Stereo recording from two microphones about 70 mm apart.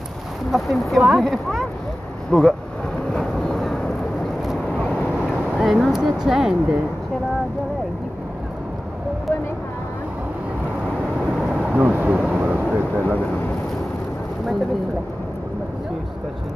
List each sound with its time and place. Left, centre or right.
0.5 s speech: centre
3.1 s vehicle: centre
5.6 s speech: centre
11.3 s vehicle: centre
11.8 s speech: right
12.3 s vehicle: right
13.0 s speech: left